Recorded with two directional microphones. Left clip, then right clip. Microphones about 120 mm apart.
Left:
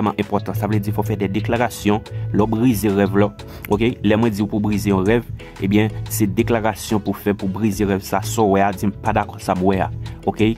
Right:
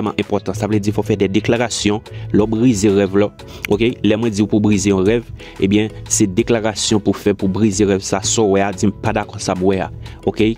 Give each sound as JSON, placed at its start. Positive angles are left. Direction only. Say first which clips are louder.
{"t": 0.0, "sound": "speech", "louder": "right 1 dB", "side_deg": -30}
{"t": 9.0, "sound": "speech", "louder": "left 4 dB", "side_deg": -35}